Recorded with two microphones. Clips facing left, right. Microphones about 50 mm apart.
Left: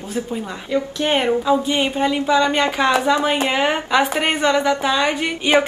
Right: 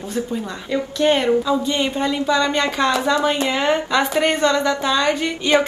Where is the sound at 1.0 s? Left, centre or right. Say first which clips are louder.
Right 4 dB; left.